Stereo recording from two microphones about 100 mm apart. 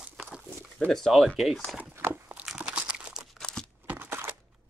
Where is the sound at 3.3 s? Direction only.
5° left (ahead or behind).